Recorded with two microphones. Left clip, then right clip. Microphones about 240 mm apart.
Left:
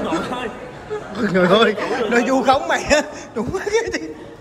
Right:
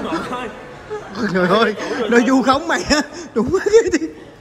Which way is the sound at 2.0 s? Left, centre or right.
Right.